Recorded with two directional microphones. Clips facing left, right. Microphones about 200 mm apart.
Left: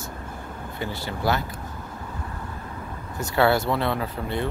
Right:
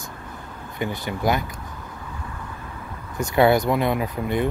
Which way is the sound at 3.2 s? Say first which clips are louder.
Right 3 dB; 20° right (ahead or behind).